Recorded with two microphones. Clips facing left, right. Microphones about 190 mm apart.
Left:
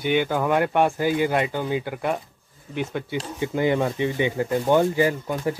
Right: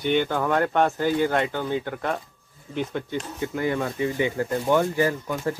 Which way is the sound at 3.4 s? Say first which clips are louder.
Left 4 dB; 20° left (ahead or behind).